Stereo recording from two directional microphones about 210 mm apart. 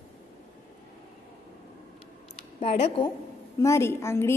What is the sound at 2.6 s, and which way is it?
Speech, 30° left (ahead or behind).